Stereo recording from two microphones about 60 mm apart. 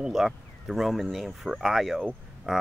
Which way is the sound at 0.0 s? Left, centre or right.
Centre.